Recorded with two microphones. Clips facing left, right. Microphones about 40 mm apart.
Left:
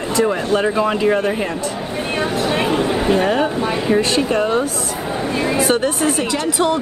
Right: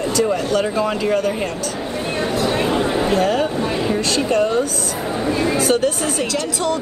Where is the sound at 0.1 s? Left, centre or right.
Left.